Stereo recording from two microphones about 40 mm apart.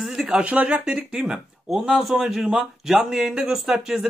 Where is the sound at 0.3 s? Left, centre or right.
Right.